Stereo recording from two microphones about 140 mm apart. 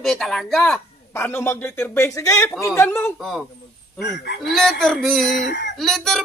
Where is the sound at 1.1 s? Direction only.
15° left (ahead or behind).